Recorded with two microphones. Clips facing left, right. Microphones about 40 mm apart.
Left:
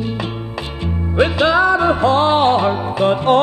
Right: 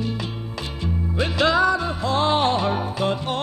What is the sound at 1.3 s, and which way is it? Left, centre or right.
Music, left.